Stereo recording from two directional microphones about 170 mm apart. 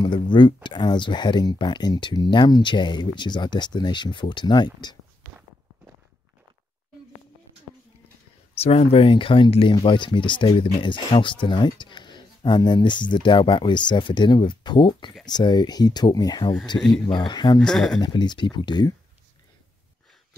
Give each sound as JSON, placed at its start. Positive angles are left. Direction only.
{"t": 0.0, "sound": "speech", "side_deg": 25}
{"t": 8.5, "sound": "speech", "side_deg": 35}
{"t": 16.7, "sound": "speech", "side_deg": 10}
{"t": 17.1, "sound": "speech", "side_deg": 25}
{"t": 17.6, "sound": "speech", "side_deg": 0}
{"t": 18.0, "sound": "speech", "side_deg": 25}